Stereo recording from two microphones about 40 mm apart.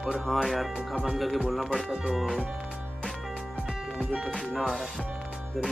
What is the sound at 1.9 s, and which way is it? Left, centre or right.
Speech, centre.